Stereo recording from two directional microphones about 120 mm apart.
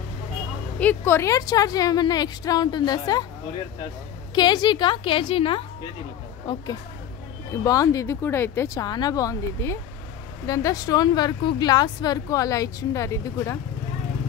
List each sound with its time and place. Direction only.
0.7 s speech: 15° left (ahead or behind); by 3.3 s 35° left (ahead or behind)
4.4 s a woman's voice: 35° left (ahead or behind)
6.4 s speech: 35° left (ahead or behind)
8.8 s speech: 35° left (ahead or behind)